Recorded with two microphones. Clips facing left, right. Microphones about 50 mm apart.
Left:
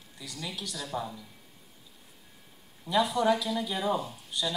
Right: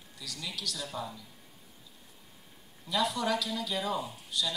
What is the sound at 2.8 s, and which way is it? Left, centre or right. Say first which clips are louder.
Speech: left 5 dB; left.